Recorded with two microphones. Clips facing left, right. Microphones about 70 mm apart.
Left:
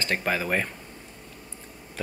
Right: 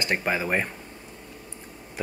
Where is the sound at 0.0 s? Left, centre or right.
Centre.